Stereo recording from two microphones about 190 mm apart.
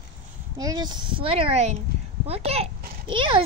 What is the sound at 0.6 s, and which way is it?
A child's voice, 20° right (ahead or behind).